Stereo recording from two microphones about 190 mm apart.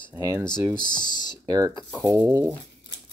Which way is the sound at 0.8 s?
20° left (ahead or behind).